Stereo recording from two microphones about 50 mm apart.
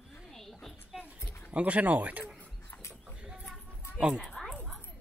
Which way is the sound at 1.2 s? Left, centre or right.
Left.